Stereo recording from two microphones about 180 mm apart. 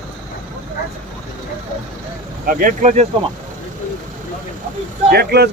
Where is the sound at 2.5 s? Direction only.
50° right (ahead or behind).